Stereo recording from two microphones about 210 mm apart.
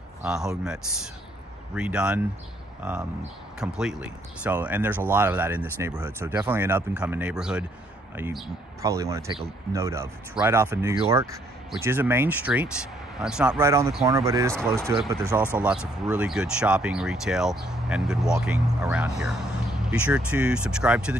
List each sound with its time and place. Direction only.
0.2 s speech: 5° right (ahead or behind)
1.8 s speech: 5° right (ahead or behind)
8.8 s speech: 15° right (ahead or behind)